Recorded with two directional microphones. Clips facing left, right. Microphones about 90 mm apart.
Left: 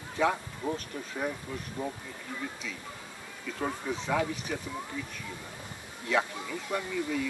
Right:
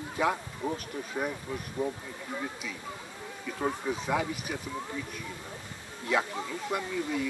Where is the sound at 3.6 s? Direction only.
10° right (ahead or behind).